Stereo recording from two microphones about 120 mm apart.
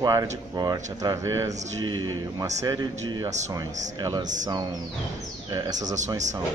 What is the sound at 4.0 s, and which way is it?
Speech, 35° right (ahead or behind).